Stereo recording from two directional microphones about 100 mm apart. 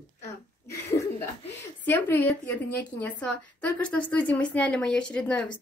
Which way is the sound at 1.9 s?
20° left (ahead or behind).